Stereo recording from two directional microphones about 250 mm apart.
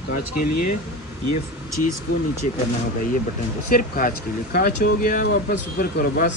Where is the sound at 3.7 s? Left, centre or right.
Left.